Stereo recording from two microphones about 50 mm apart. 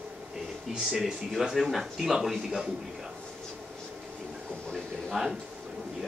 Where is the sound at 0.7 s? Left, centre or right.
Centre.